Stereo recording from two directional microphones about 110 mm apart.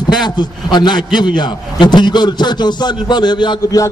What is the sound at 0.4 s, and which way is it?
A man's voice, 40° left (ahead or behind).